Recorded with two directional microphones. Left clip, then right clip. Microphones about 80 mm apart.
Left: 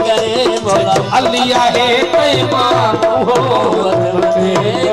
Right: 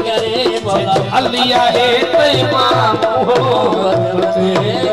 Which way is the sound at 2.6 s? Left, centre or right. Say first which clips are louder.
Left 1 dB; left.